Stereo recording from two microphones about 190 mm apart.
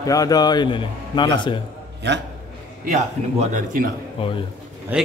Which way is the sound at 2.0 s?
65° right (ahead or behind).